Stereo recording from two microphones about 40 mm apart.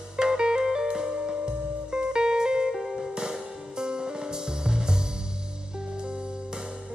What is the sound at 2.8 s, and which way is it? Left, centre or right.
Music, centre.